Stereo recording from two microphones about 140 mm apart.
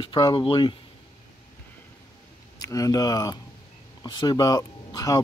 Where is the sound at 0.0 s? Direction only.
30° left (ahead or behind).